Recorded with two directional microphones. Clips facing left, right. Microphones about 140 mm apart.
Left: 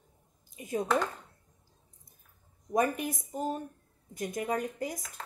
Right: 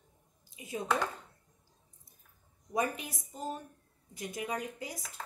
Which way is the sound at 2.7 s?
50° left (ahead or behind).